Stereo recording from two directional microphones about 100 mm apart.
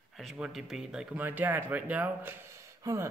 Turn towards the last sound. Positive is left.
turn(degrees=-30)  # may be behind; listen again after turning